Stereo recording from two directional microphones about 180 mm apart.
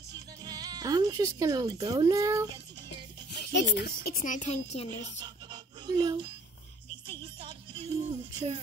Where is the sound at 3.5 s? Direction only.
65° left (ahead or behind).